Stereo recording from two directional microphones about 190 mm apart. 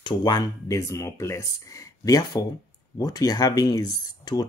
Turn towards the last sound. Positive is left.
turn(degrees=20)  # may be behind; listen again after turning